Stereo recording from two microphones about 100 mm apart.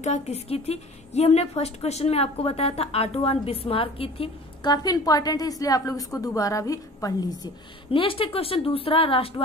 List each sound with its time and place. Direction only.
0.1 s a woman's voice: 90° left; by 4.3 s 65° left (ahead or behind)
4.6 s a woman's voice: 40° left (ahead or behind)
7.9 s a woman's voice: 65° left (ahead or behind)